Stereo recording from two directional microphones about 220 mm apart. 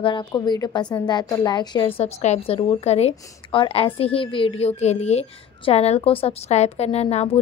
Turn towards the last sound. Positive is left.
turn(degrees=25)  # may be behind; listen again after turning